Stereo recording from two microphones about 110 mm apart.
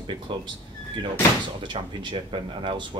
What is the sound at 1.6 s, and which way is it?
Speech, 45° right (ahead or behind).